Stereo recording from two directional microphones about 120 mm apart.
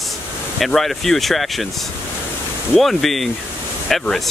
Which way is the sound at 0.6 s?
Centre (ahead or behind).